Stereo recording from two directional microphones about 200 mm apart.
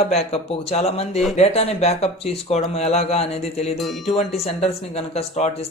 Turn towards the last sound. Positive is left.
turn(degrees=30)  # may be behind; listen again after turning